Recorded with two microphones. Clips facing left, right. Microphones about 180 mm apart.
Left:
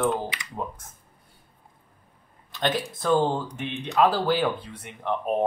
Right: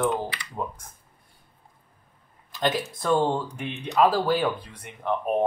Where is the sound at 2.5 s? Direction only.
Centre (ahead or behind).